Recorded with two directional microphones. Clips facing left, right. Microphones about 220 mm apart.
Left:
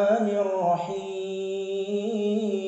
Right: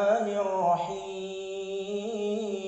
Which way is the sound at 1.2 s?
30° left (ahead or behind).